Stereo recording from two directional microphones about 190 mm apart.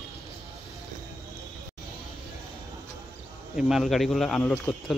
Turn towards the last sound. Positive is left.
turn(degrees=0)  # may be behind; listen again after turning